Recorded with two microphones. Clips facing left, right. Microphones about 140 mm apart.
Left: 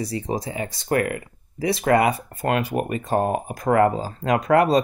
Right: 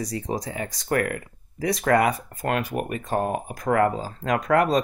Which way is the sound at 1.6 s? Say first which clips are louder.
Left 2 dB; 25° left (ahead or behind).